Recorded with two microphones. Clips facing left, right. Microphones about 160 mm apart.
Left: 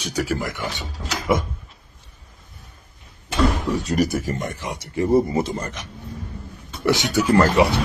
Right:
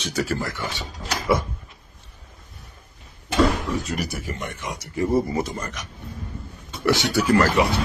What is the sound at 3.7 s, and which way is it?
Speech, 40° left (ahead or behind).